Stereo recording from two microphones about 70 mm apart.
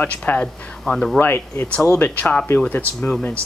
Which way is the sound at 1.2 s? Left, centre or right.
Left.